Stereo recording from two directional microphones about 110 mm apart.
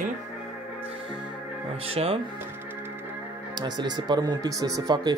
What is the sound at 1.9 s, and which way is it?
Speech, 60° right (ahead or behind).